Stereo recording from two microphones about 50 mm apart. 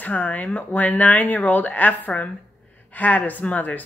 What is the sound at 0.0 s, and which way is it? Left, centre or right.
Speech, left.